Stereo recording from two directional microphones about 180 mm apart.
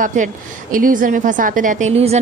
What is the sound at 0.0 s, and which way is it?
A woman's voice, 45° right (ahead or behind).